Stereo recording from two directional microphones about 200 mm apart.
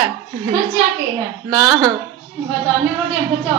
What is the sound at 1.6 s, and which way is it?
Speech, 15° right (ahead or behind).